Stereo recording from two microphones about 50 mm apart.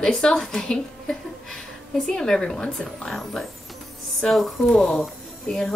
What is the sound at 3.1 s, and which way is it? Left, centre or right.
A woman's voice, centre.